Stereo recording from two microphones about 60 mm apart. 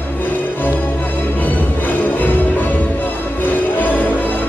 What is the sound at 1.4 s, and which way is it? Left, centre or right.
Music, left.